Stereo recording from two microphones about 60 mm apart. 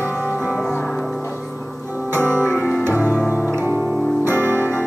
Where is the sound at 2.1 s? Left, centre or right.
Right.